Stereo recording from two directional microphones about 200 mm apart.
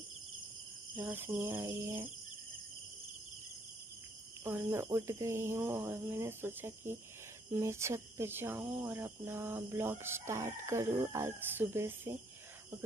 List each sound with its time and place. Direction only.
0.9 s speech: 10° right (ahead or behind)
4.5 s speech: 10° right (ahead or behind)